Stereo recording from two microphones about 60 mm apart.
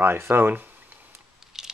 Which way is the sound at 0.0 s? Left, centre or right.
Right.